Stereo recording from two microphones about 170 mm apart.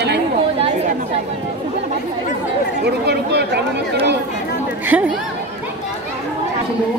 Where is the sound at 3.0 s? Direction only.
80° right.